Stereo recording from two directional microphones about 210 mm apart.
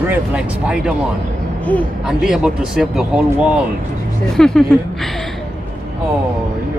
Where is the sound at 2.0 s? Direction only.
5° right (ahead or behind).